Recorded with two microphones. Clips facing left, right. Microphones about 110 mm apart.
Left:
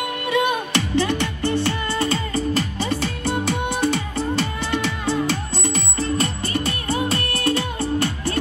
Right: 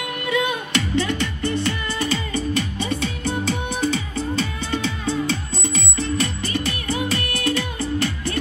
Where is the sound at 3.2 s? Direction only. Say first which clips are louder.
Left 2 dB; 60° left (ahead or behind).